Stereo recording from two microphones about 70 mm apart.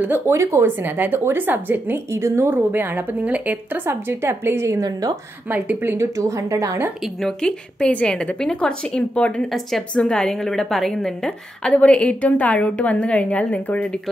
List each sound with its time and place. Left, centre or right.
0.3 s a woman's voice: right
2.1 s a woman's voice: right
3.9 s a woman's voice: right
5.5 s a woman's voice: right
5.9 s speech: right
7.2 s a woman's voice: centre
11.7 s a woman's voice: centre